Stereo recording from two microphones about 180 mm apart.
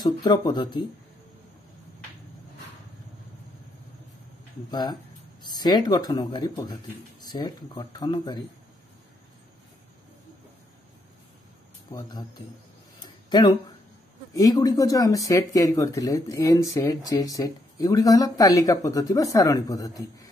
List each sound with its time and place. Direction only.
0.0 s speech: 25° left (ahead or behind)
4.6 s speech: 25° left (ahead or behind)
11.9 s speech: 25° left (ahead or behind)
13.0 s a sound: 25° left (ahead or behind)
14.3 s speech: 20° left (ahead or behind)